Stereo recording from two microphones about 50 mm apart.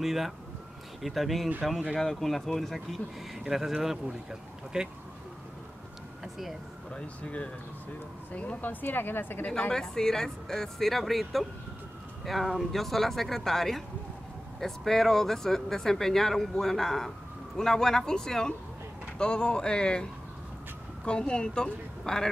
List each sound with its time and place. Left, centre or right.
0.0 s speech: centre
3.4 s speech: centre
6.2 s vehicle: centre
6.9 s speech: left
9.6 s speech: centre